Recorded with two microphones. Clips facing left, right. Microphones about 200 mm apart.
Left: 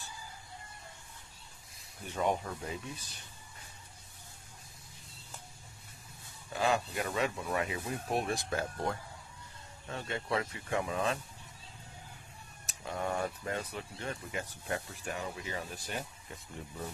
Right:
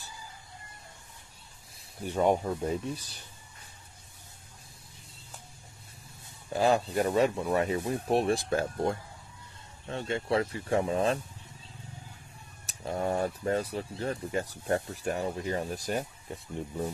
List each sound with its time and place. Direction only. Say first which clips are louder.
2.0 s speech: right 7 dB; 40° right (ahead or behind)
6.5 s speech: right 6 dB; 35° right (ahead or behind)
12.6 s speech: right 5 dB; 35° right (ahead or behind)